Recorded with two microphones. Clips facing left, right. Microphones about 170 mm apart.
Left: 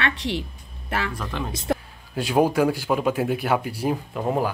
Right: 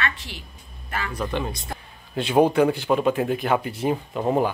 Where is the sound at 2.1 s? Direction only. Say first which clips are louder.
Right 2 dB; 5° left (ahead or behind).